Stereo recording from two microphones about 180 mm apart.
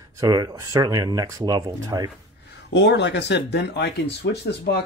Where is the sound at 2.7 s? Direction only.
75° left (ahead or behind).